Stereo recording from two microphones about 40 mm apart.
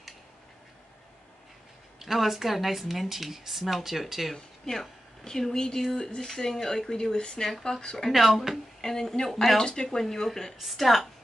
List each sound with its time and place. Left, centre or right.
2.0 s speech: centre
4.6 s a woman's voice: centre
8.1 s speech: centre
8.8 s speech: centre
9.6 s speech: centre
9.9 s speech: centre